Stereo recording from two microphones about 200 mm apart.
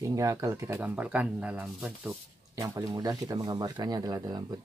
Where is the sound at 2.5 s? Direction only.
15° right (ahead or behind).